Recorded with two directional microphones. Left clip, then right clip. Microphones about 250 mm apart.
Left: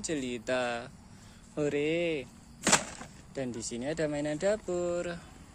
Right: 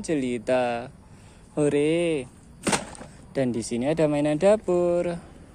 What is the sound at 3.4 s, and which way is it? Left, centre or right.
Speech, right.